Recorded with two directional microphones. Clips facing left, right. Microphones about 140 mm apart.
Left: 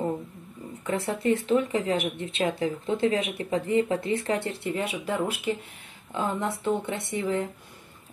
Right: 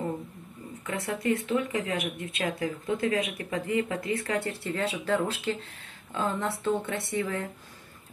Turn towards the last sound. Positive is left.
turn(degrees=20)  # may be behind; listen again after turning